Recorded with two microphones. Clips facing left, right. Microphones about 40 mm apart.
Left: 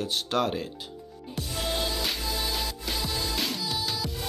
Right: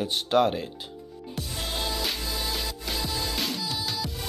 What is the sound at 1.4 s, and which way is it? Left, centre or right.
Music, centre.